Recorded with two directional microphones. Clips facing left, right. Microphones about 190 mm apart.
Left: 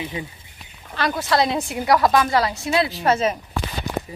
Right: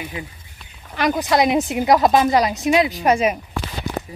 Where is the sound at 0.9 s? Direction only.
15° right (ahead or behind).